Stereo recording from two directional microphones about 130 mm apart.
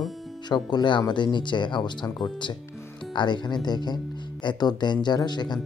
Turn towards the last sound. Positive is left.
turn(degrees=35)  # may be behind; listen again after turning